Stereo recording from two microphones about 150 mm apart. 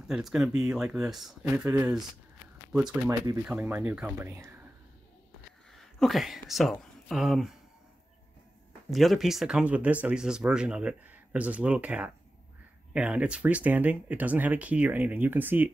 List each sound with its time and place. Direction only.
0.0 s speech: 5° right (ahead or behind)
3.1 s speech: 20° right (ahead or behind)
5.7 s a sound: centre (ahead or behind)
6.5 s speech: centre (ahead or behind)
8.9 s speech: centre (ahead or behind)